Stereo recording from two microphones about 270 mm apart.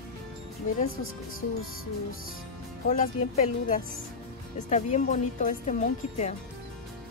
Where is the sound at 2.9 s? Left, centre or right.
Left.